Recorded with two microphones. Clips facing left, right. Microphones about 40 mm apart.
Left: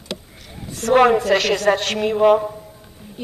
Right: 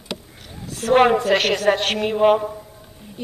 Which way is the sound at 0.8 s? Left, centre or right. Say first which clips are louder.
Left 1 dB; right.